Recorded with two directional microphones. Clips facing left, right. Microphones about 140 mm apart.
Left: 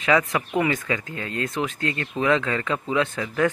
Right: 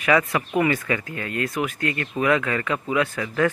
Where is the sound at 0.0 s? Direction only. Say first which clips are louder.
Right 1 dB; 20° left (ahead or behind).